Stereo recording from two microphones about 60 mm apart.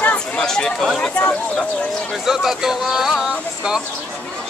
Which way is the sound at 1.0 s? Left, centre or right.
Centre.